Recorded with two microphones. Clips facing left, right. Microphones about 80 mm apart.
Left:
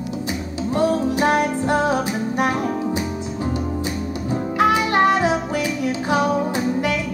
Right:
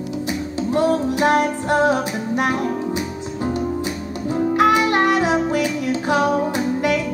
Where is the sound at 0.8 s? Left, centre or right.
Left.